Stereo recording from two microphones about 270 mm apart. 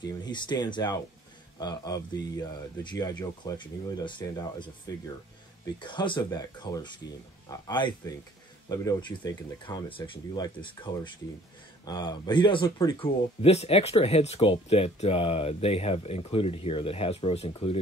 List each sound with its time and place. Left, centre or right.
0.0 s speech: centre